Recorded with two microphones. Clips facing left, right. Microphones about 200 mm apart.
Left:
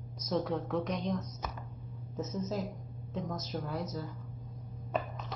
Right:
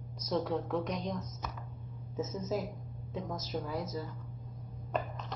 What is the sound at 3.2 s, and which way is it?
Speech, 15° right (ahead or behind).